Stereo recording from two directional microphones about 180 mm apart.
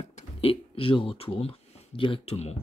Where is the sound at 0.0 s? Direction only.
30° left (ahead or behind).